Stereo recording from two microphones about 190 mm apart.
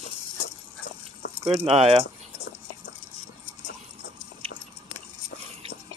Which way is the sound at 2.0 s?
65° left (ahead or behind).